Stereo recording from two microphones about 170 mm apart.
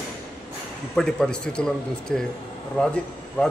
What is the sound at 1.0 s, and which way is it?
A man's voice, 5° left (ahead or behind).